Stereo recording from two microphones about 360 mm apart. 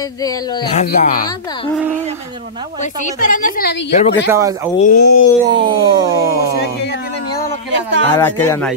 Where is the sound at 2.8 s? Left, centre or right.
Left.